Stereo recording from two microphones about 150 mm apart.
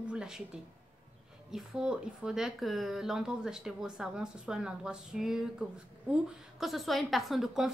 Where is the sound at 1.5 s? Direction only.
5° right (ahead or behind).